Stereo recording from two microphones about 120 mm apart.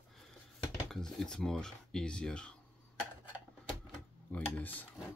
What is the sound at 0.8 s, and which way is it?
Speech, 5° left (ahead or behind).